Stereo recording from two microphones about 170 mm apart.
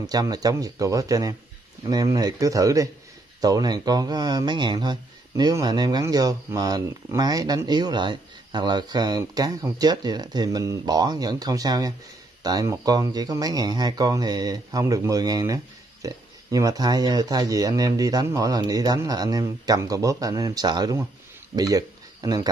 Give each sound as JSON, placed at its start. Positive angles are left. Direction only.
{"t": 0.0, "sound": "speech", "side_deg": -20}